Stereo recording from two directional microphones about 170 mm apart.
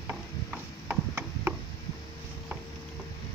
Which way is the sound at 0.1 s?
10° right (ahead or behind).